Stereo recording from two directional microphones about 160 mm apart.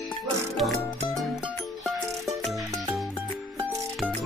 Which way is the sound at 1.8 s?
Centre (ahead or behind).